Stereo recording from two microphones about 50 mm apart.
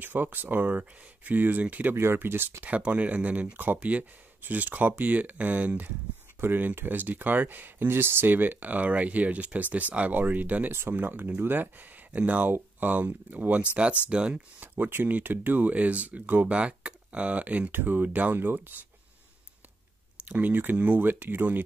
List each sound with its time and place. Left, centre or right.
0.0 s speech: right
2.1 s speech: right
2.6 s speech: right
6.4 s speech: right
10.7 s speech: right
11.0 s speech: right
14.0 s speech: centre
14.3 s speech: right
16.5 s speech: right
20.2 s speech: right